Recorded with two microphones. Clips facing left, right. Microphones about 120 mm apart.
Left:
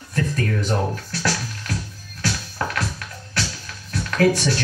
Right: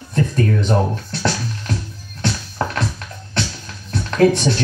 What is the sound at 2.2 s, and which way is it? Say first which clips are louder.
Music: right 3 dB; 30° right (ahead or behind).